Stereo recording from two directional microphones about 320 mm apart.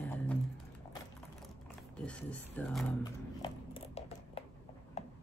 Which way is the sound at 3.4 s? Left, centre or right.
Centre.